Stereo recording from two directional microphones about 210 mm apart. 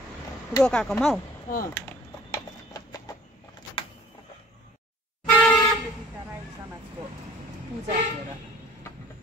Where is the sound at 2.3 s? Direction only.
15° left (ahead or behind).